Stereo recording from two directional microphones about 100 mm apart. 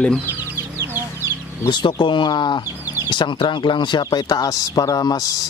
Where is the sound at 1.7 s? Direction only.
50° left (ahead or behind).